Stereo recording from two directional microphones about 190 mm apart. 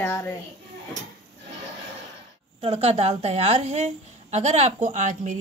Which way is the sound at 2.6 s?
30° right (ahead or behind).